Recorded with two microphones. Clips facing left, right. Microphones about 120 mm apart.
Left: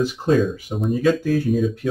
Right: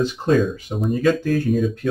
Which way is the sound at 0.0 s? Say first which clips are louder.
Even; 5° left (ahead or behind).